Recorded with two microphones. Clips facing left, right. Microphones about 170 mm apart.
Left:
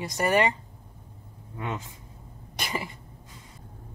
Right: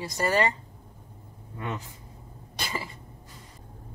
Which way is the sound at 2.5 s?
20° left (ahead or behind).